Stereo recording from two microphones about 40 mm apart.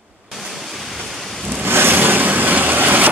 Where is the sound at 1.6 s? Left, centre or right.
Right.